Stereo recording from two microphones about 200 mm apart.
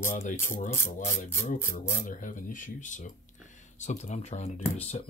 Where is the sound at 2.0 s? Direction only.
40° left (ahead or behind).